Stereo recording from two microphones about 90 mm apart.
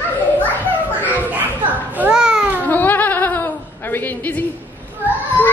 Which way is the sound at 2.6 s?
20° left (ahead or behind).